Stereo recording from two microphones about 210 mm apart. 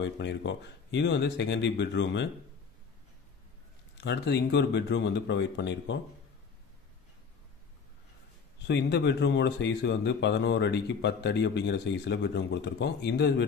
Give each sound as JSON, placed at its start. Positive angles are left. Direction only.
{"t": 0.0, "sound": "speech", "side_deg": 60}
{"t": 4.0, "sound": "speech", "side_deg": 55}
{"t": 8.6, "sound": "speech", "side_deg": 55}